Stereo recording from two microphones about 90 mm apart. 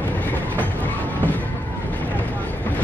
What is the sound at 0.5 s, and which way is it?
Train, 20° left (ahead or behind).